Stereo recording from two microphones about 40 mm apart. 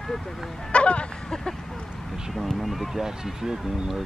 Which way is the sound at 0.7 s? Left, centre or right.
Left.